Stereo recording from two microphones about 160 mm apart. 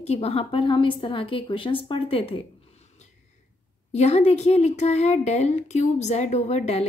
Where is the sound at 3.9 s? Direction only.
40° left (ahead or behind).